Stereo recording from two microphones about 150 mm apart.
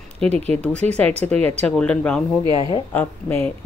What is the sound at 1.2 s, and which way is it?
Speech, 5° left (ahead or behind).